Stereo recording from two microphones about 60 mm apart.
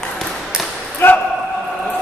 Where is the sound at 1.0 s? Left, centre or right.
Left.